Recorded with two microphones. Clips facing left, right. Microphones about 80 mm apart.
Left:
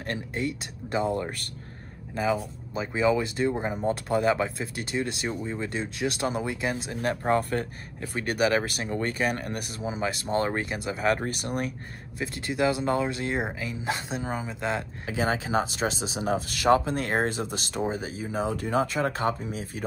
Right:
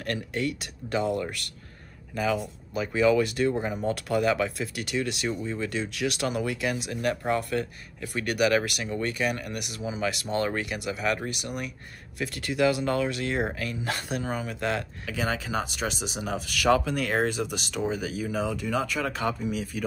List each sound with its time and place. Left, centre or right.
0.0 s speech: left
12.2 s speech: left